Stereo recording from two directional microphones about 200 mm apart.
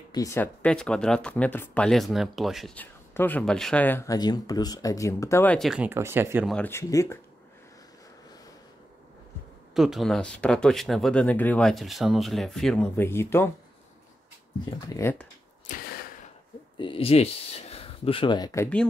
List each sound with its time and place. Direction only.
0.1 s speech: 15° left (ahead or behind); by 6.5 s 10° right (ahead or behind)
6.5 s speech: 10° left (ahead or behind)
9.8 s speech: centre (ahead or behind)
14.9 s speech: 10° left (ahead or behind)
15.6 s a sound: 45° left (ahead or behind)
16.7 s speech: 25° left (ahead or behind); by 18.9 s 10° left (ahead or behind)